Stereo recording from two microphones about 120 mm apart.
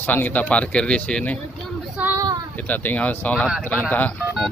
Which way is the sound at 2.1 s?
30° right (ahead or behind).